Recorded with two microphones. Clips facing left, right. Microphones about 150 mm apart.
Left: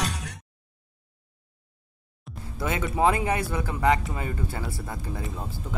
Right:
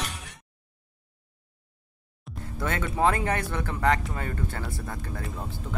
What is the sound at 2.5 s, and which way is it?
Speech, 5° left (ahead or behind).